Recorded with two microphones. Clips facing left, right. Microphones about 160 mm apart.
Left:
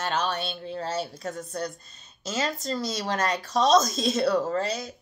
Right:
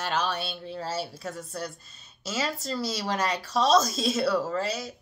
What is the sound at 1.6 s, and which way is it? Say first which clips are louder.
Speech: left 3 dB; 5° right (ahead or behind).